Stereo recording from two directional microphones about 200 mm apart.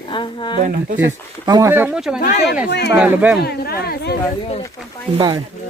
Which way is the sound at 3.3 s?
50° left (ahead or behind).